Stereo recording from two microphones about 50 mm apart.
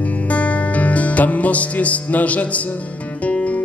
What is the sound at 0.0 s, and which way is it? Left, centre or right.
Music, left.